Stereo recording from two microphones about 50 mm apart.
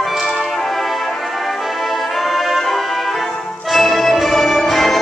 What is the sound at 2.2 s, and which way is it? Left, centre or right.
Music, centre.